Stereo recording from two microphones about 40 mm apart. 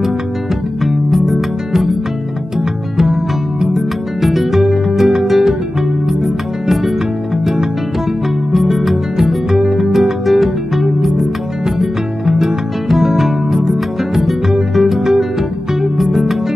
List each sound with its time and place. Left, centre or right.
1.1 s music: centre
3.6 s music: centre
8.5 s music: centre